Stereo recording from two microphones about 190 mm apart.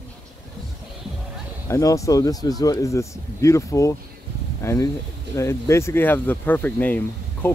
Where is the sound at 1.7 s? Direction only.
15° left (ahead or behind).